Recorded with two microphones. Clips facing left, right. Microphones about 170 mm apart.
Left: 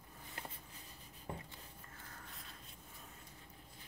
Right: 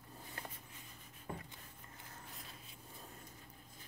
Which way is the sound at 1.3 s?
20° left (ahead or behind).